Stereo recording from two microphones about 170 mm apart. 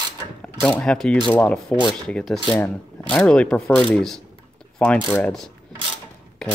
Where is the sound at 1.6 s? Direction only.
25° left (ahead or behind).